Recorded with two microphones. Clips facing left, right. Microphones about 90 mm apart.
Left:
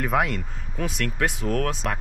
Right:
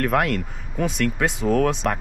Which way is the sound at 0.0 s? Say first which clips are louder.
Right 3 dB; centre (ahead or behind).